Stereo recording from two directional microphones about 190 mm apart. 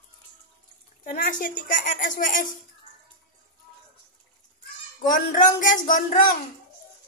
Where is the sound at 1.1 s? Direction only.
45° left (ahead or behind).